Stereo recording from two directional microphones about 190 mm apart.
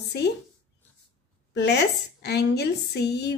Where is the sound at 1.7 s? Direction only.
60° left (ahead or behind).